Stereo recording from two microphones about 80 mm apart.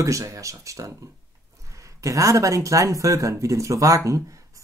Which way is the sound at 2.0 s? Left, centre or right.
Right.